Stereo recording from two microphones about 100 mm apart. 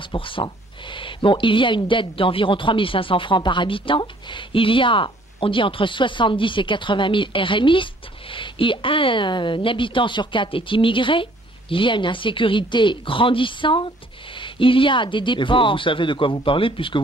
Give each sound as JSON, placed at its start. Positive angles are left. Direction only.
{"t": 0.0, "sound": "speech", "side_deg": 60}